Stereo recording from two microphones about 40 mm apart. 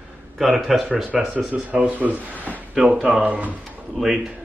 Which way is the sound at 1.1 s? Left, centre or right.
Right.